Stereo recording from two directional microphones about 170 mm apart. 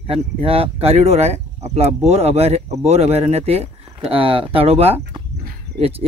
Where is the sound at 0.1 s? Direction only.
35° right (ahead or behind).